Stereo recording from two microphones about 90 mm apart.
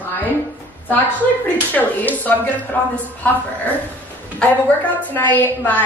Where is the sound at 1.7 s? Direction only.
20° left (ahead or behind).